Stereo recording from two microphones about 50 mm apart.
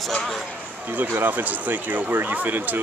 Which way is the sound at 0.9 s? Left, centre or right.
Right.